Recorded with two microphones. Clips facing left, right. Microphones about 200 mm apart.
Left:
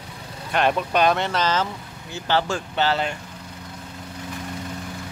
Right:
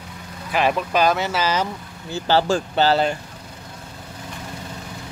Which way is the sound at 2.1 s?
35° right (ahead or behind).